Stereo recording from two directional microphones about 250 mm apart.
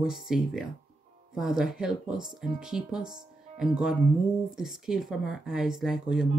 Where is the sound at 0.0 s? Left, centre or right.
Centre.